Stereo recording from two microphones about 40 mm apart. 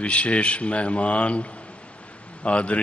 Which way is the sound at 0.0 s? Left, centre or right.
Left.